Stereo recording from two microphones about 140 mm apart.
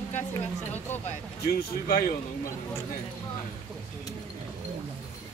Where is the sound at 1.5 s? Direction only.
90° left.